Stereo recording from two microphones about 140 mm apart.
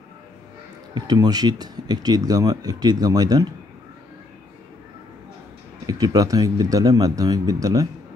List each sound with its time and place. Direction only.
0.9 s speech: 30° right (ahead or behind)
5.9 s speech: 25° right (ahead or behind)